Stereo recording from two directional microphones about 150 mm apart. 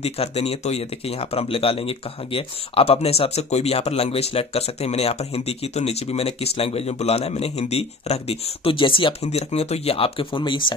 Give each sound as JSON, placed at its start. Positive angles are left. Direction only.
{"t": 0.0, "sound": "speech", "side_deg": 40}